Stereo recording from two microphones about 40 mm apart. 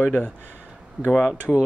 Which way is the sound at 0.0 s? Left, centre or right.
Left.